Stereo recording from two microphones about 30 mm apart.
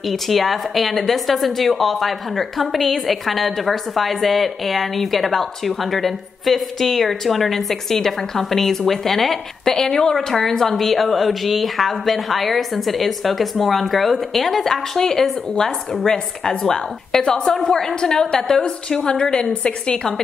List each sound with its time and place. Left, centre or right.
0.1 s a woman's voice: centre
19.6 s a woman's voice: left